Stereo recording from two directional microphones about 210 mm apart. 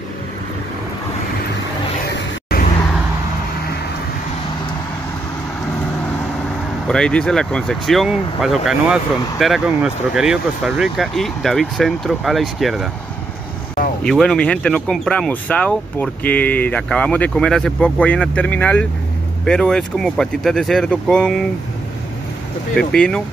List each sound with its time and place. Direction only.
2.5 s a sound: 45° left (ahead or behind)
6.9 s speech: 5° left (ahead or behind)
14.0 s speech: 5° left (ahead or behind)
22.8 s speech: 5° left (ahead or behind)